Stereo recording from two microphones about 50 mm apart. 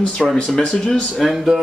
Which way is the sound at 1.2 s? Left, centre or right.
Centre.